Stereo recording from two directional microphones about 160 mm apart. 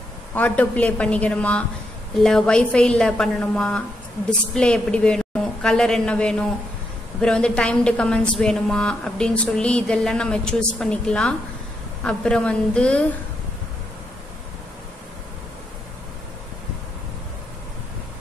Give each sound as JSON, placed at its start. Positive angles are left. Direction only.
{"t": 0.3, "sound": "a woman's voice", "side_deg": 10}